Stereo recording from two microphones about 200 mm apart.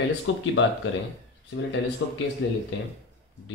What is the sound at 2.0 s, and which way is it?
Speech, 65° left (ahead or behind).